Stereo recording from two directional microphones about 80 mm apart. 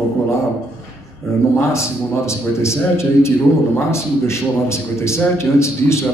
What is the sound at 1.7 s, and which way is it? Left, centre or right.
A man's voice, left.